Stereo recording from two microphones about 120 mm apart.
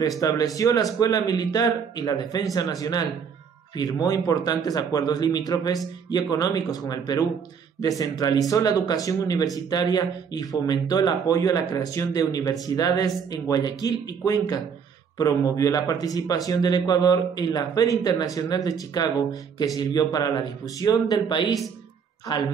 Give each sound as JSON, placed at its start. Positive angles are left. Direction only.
{"t": 0.2, "sound": "speech", "side_deg": 30}
{"t": 8.4, "sound": "speech", "side_deg": 30}